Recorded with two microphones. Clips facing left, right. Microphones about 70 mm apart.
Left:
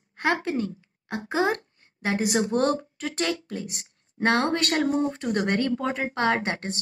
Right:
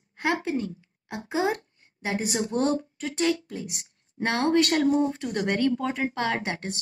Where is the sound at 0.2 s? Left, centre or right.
Left.